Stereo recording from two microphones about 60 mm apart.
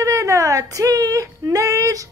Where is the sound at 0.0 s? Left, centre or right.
Right.